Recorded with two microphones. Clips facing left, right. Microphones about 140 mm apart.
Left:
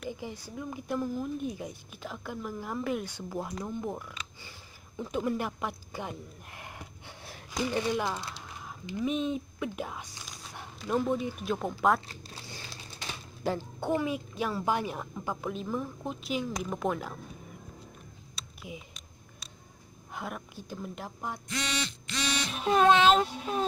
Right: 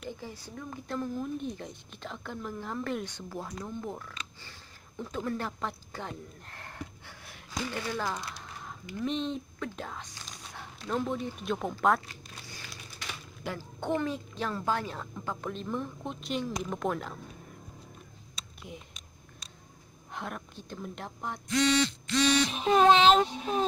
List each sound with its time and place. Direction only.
0.2 s a woman's voice: 10° left (ahead or behind)
9.0 s speech: 5° left (ahead or behind)
12.1 s a sound: 25° left (ahead or behind)
13.6 s a woman's voice: 10° left (ahead or behind)
18.7 s speech: 5° left (ahead or behind)
20.1 s speech: 5° left (ahead or behind)
22.5 s speech: 20° right (ahead or behind)